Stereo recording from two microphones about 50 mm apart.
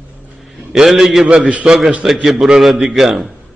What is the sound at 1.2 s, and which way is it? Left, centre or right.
Speech, right.